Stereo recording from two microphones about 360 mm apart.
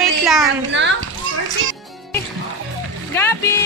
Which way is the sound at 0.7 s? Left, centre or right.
Right.